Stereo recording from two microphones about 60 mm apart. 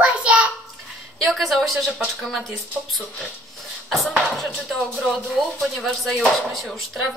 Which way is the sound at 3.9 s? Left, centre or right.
Centre.